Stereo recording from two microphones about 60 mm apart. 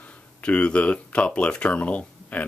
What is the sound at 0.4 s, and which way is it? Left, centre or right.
Speech, centre.